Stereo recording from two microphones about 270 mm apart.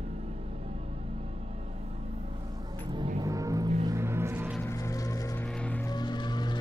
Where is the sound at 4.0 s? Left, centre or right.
Centre.